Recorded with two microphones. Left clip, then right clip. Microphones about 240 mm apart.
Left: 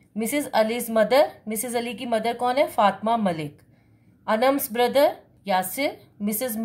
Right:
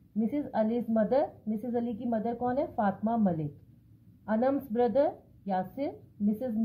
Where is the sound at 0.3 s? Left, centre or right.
Left.